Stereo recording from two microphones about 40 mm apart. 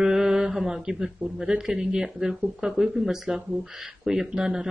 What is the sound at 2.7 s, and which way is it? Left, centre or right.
Speech, centre.